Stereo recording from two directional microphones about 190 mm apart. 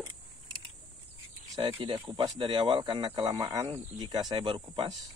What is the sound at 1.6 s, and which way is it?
Speech, 25° right (ahead or behind).